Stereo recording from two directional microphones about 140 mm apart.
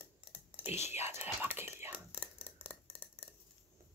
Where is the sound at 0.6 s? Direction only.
15° right (ahead or behind).